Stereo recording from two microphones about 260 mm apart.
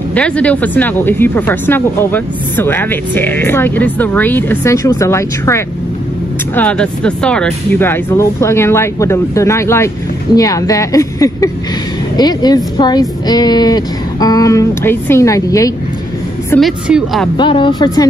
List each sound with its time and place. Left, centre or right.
0.1 s speech: centre
16.4 s speech: centre
17.4 s speech: centre